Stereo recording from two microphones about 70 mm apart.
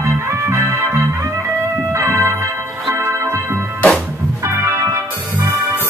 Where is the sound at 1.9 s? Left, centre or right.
Right.